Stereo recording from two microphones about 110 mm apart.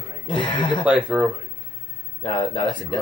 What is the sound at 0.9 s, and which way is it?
Speech, 10° right (ahead or behind).